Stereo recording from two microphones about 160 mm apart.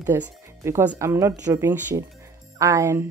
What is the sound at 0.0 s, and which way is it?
Speech, 15° right (ahead or behind).